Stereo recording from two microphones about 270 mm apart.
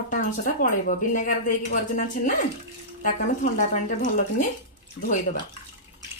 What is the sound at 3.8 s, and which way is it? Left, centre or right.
Speech, left.